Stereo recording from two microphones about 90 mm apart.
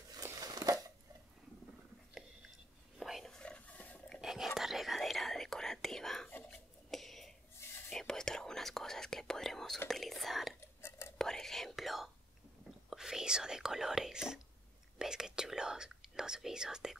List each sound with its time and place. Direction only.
0.2 s a sound: 40° right (ahead or behind)
3.0 s whispering: centre (ahead or behind); by 4.0 s 15° left (ahead or behind)
4.1 s whispering: 5° right (ahead or behind)
6.5 s a sound: centre (ahead or behind)
7.9 s whispering: 5° left (ahead or behind)
10.8 s whispering: 30° left (ahead or behind)
11.1 s whispering: 5° left (ahead or behind)